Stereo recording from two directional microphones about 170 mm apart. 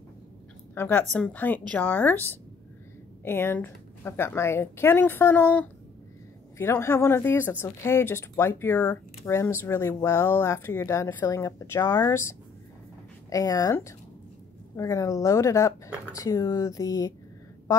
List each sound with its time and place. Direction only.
0.7 s speech: 10° left (ahead or behind)
14.8 s speech: 20° left (ahead or behind)